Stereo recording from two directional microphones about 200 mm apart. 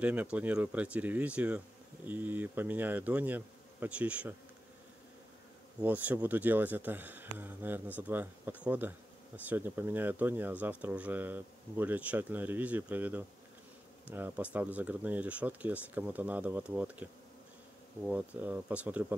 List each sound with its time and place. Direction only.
0.0 s speech: 5° right (ahead or behind)
5.8 s speech: 10° right (ahead or behind)